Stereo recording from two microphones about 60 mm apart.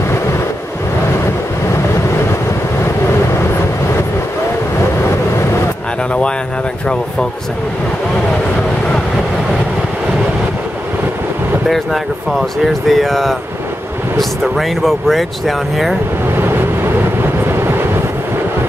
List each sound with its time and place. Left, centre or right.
11.7 s speech: centre
14.4 s speech: centre
17.2 s vehicle: right